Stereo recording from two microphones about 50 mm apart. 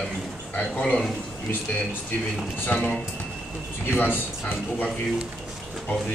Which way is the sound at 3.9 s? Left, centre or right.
Left.